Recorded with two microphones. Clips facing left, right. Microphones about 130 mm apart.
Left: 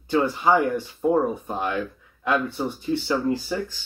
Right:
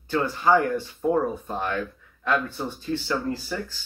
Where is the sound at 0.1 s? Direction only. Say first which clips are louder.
Left 1 dB; 15° left (ahead or behind).